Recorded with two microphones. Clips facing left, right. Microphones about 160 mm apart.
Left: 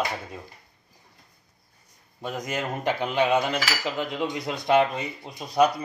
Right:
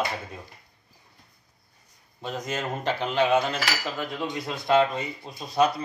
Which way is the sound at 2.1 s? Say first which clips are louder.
Left 1 dB; 10° left (ahead or behind).